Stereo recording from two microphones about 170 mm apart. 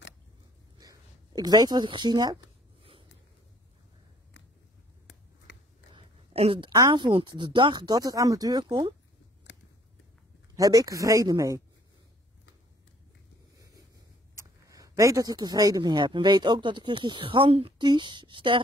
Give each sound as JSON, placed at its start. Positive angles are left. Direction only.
{"t": 0.7, "sound": "a sound", "side_deg": -20}
{"t": 5.5, "sound": "biting", "side_deg": 90}
{"t": 5.9, "sound": "speech", "side_deg": -35}
{"t": 10.5, "sound": "speech", "side_deg": -20}
{"t": 14.3, "sound": "speech", "side_deg": -20}